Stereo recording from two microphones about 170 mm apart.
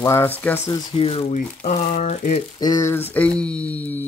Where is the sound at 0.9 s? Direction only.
35° left (ahead or behind).